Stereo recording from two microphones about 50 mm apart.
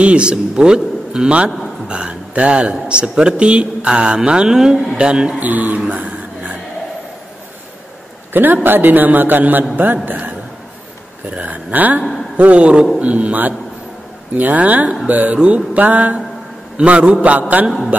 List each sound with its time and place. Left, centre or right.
0.0 s a man's voice: right
4.9 s a man's voice: right
5.4 s a man's voice: right
5.9 s a sound: right
8.3 s a man's voice: right
12.0 s a man's voice: centre
12.4 s a man's voice: right
15.3 s a man's voice: right